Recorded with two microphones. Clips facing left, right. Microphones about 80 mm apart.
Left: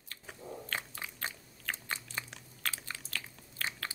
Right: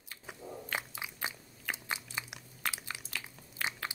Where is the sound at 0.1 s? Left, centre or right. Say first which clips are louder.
Even; centre.